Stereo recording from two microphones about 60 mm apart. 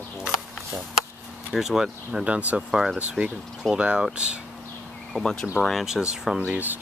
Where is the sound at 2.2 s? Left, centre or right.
Right.